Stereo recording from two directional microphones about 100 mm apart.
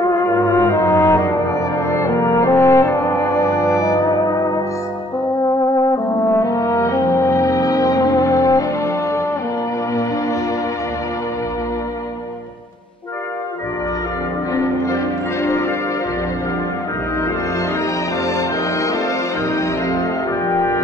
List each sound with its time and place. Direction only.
0.0 s brass instrument: 30° left (ahead or behind)
5.8 s brass instrument: 40° left (ahead or behind)
6.3 s french horn: 35° left (ahead or behind)
14.5 s change ringing: 30° left (ahead or behind)
20.4 s music: 30° left (ahead or behind)